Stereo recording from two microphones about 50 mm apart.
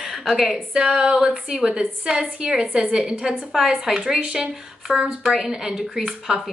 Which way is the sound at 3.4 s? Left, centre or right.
Centre.